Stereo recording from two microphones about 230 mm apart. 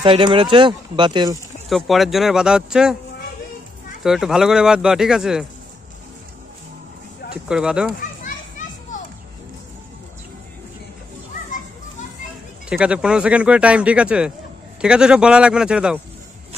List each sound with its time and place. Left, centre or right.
0.0 s speech: right
1.7 s speech: centre
4.0 s speech: centre
7.4 s speech: centre
8.0 s children playing: left
12.6 s speech: centre